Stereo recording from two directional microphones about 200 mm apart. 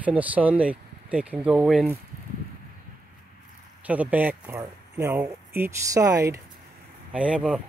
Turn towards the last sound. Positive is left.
turn(degrees=-5)  # may be behind; listen again after turning